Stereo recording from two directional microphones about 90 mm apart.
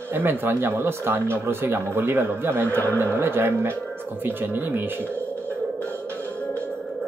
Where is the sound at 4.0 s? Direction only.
25° right (ahead or behind).